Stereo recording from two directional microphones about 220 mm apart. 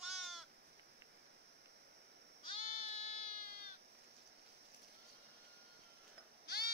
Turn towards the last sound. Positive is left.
turn(degrees=45)  # may be behind; listen again after turning